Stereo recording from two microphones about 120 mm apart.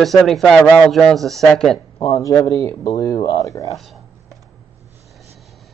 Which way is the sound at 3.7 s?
Centre (ahead or behind).